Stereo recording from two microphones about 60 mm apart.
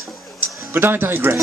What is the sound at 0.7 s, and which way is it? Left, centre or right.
Speech, right.